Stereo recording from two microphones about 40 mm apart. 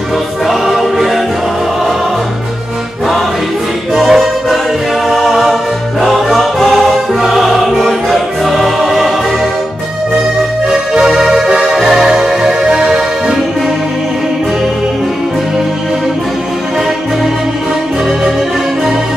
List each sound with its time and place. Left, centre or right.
0.5 s choir: centre
3.9 s music: centre
11.1 s music: centre